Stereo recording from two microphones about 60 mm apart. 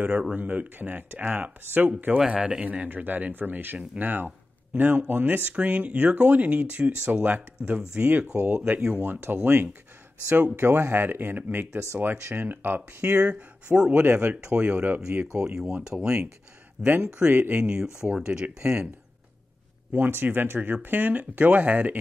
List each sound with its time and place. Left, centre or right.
0.0 s speech: centre
0.4 s speech: right
2.1 s speech: centre; by 12.4 s right
12.4 s speech: right
13.0 s speech: right
17.3 s speech: right
17.6 s speech: centre
19.9 s speech: right